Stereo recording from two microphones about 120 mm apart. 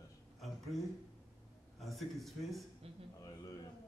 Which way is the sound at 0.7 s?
Centre (ahead or behind).